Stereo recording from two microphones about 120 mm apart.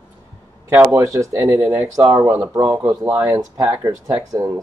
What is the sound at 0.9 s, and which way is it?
Speech, 25° right (ahead or behind).